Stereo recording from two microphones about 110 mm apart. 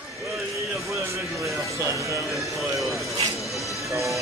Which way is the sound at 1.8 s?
25° right (ahead or behind).